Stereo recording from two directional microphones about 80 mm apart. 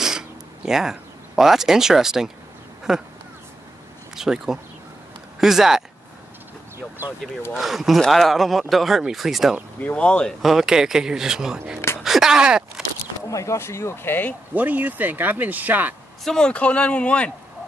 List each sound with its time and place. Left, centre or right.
0.0 s a sound: centre
2.9 s speech: centre
4.1 s speech: centre
7.5 s speech: centre
9.8 s speech: centre
10.4 s speech: centre
12.0 s a sound: centre
13.3 s speech: left
14.5 s speech: right
16.3 s speech: centre